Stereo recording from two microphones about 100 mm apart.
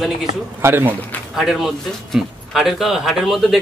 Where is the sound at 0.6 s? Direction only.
20° right (ahead or behind).